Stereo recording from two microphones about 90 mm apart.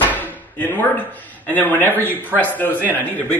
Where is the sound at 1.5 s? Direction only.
20° left (ahead or behind).